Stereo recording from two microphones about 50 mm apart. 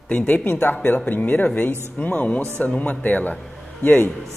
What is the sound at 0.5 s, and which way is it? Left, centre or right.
Speech, left.